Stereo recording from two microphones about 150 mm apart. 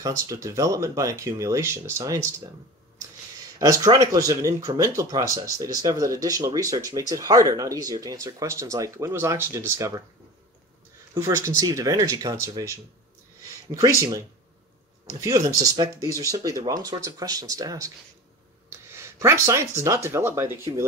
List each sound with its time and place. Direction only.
0.0 s speech: 20° right (ahead or behind)
3.5 s speech: 20° right (ahead or behind)
11.1 s speech: 20° right (ahead or behind)
13.7 s speech: 20° right (ahead or behind)
18.7 s a sound: 15° right (ahead or behind)
19.8 s speech: 20° right (ahead or behind)